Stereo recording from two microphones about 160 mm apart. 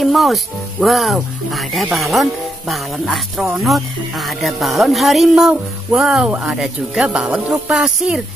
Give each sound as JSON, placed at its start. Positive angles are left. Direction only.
{"t": 0.0, "sound": "speech", "side_deg": 0}